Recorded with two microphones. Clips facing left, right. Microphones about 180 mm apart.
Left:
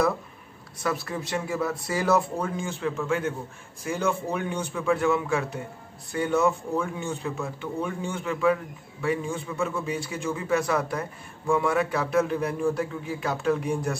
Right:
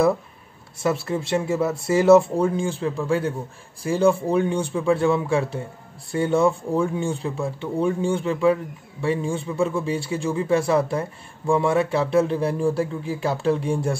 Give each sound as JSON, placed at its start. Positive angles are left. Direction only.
{"t": 0.7, "sound": "a man's voice", "side_deg": -25}